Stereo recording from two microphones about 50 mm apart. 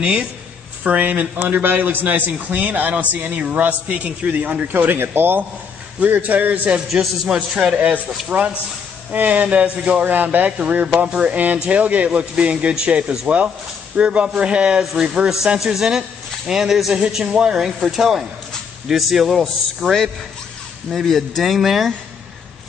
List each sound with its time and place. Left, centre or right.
0.0 s a man's voice: right
4.9 s a man's voice: right
5.9 s a man's voice: right
6.9 s speech: centre
8.3 s a man's voice: right
10.0 s a man's voice: right
11.1 s a man's voice: right
11.3 s a man's voice: right
15.4 s speech: centre